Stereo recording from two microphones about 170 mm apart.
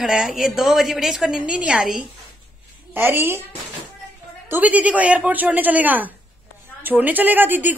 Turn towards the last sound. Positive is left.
turn(degrees=-10)  # may be behind; listen again after turning